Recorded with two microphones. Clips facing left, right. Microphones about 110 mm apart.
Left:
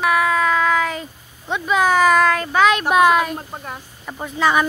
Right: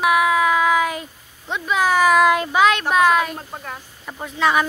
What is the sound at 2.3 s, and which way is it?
Speech, 15° right (ahead or behind).